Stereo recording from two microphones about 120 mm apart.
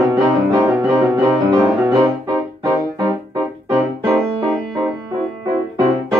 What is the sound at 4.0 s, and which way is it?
Music, 45° right (ahead or behind).